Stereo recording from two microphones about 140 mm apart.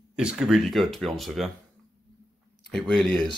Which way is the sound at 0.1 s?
5° right (ahead or behind).